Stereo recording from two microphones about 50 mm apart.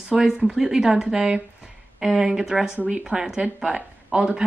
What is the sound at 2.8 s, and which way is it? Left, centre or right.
Speech, right.